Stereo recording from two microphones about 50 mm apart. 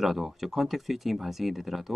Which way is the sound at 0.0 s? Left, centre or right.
Centre.